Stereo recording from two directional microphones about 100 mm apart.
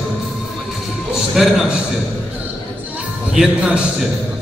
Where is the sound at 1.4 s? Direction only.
Centre (ahead or behind).